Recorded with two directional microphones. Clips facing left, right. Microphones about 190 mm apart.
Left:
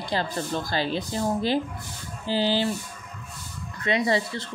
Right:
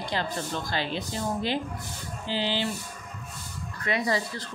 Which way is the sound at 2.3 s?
40° left (ahead or behind).